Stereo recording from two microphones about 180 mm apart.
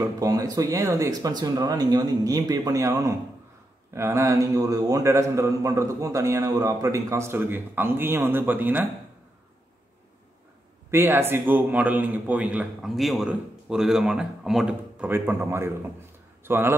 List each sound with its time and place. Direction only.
0.0 s a man's voice: 20° right (ahead or behind)
10.9 s a man's voice: 15° right (ahead or behind)